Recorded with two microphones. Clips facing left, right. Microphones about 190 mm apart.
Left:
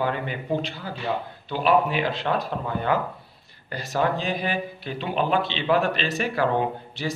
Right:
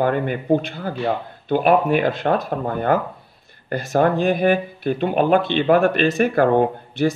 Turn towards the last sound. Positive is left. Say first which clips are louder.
# right 9 dB
turn(degrees=-50)  # may be behind; listen again after turning